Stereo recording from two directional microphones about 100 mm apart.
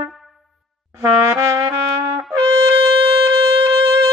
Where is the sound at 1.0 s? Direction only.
35° right (ahead or behind).